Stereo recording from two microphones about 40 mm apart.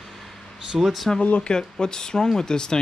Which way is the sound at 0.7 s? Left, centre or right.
Centre.